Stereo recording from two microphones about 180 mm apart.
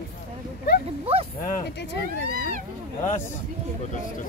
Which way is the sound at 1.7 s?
70° left (ahead or behind).